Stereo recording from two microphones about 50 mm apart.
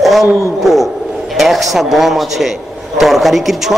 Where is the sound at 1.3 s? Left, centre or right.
Centre.